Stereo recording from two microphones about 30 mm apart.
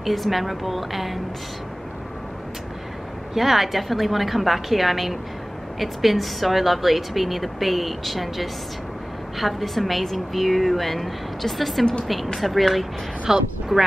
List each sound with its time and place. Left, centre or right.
0.0 s a woman's voice: centre
3.3 s a woman's voice: centre
13.3 s speech: centre